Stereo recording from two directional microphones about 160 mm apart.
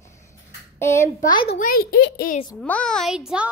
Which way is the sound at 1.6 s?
70° left (ahead or behind).